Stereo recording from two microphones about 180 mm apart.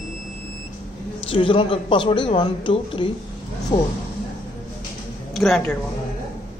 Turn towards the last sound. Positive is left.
turn(degrees=0)  # may be behind; listen again after turning